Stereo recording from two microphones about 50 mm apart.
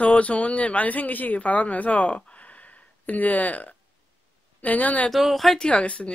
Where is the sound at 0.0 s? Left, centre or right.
Left.